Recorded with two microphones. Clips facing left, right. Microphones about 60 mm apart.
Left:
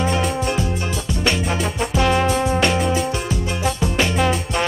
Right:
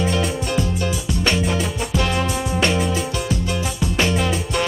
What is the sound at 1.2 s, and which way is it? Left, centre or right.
Music, centre.